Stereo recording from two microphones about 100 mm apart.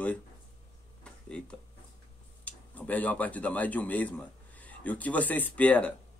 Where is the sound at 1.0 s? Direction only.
10° left (ahead or behind).